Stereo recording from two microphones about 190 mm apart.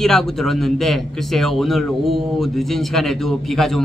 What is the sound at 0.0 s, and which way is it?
A man's voice, centre (ahead or behind).